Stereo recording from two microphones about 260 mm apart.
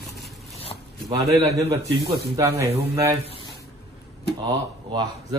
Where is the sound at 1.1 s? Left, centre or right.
Centre.